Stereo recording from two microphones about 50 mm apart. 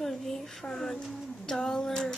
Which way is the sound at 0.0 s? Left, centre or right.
Centre.